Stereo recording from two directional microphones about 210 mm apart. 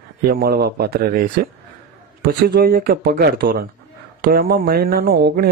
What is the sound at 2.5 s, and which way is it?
Speech, 45° right (ahead or behind).